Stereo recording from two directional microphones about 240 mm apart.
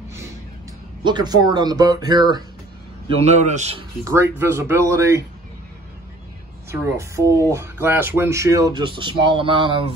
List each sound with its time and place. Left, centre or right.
1.0 s speech: centre
3.2 s a man's voice: right
4.0 s speech: centre
6.7 s speech: centre